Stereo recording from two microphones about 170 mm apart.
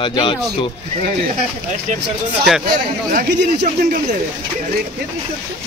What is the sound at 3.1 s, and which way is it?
Speech, 70° right (ahead or behind).